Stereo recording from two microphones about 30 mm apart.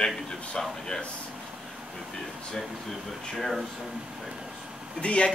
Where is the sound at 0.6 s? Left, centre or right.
Centre.